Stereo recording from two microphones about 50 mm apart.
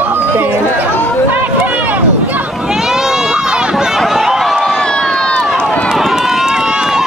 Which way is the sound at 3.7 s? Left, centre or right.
Centre.